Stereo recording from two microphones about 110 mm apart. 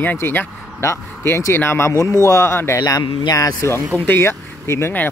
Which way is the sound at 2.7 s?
35° left (ahead or behind).